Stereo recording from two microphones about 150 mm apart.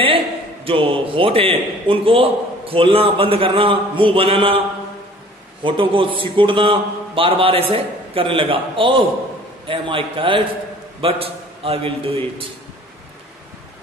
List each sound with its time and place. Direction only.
0.7 s a man's voice: 35° right (ahead or behind)
5.6 s a man's voice: 35° right (ahead or behind)